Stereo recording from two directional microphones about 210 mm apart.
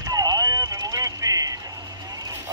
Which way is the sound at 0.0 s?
15° right (ahead or behind).